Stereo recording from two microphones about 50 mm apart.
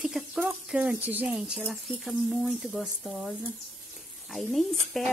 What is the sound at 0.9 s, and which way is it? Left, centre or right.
Speech, right.